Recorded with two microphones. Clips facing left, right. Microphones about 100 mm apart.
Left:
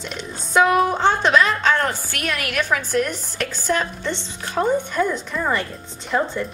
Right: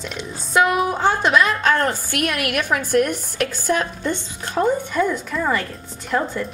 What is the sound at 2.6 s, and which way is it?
Speech, 50° right (ahead or behind).